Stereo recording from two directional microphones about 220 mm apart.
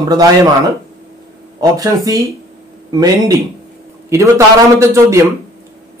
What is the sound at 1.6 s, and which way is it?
A man's voice, 15° right (ahead or behind).